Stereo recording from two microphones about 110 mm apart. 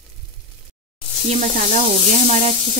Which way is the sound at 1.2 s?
90° right.